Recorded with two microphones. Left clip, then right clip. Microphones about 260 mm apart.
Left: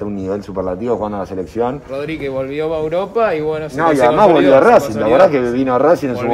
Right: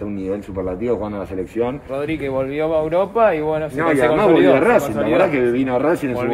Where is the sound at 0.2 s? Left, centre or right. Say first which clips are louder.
Left 3 dB; centre.